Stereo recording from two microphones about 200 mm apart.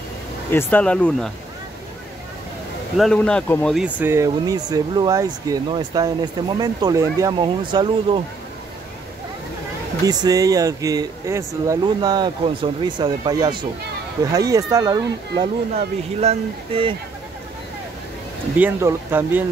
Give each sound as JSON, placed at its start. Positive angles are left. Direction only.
{"t": 0.5, "sound": "speech", "side_deg": 10}
{"t": 3.0, "sound": "speech", "side_deg": 5}
{"t": 3.8, "sound": "speech", "side_deg": -10}
{"t": 10.0, "sound": "speech", "side_deg": -20}
{"t": 18.6, "sound": "speech", "side_deg": -10}